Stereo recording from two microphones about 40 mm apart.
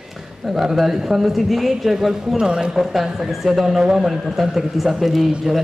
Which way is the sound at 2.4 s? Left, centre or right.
Right.